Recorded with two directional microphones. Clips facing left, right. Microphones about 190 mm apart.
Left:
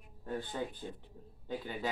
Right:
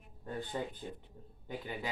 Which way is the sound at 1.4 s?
15° right (ahead or behind).